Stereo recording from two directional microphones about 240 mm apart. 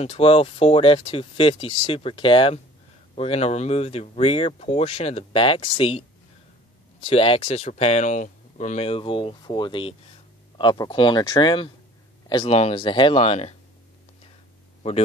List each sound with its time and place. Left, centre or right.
0.0 s speech: left